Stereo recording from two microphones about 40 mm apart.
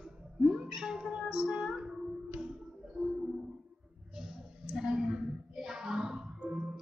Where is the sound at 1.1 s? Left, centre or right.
Right.